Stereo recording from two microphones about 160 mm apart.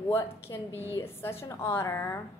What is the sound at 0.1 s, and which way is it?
A woman's voice, 15° left (ahead or behind).